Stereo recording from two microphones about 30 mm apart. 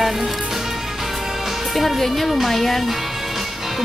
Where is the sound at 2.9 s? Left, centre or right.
Centre.